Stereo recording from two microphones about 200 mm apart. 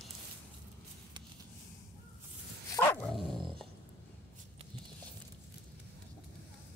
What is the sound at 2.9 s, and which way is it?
Dog, 5° left (ahead or behind).